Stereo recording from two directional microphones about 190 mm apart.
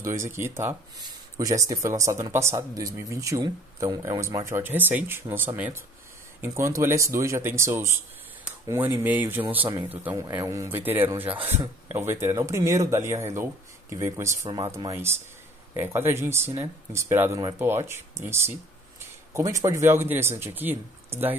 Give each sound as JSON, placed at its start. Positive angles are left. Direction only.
{"t": 0.0, "sound": "speech", "side_deg": -15}
{"t": 19.3, "sound": "speech", "side_deg": -15}